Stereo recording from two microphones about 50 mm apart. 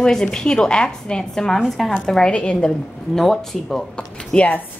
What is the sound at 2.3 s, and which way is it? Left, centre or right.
Speech, left.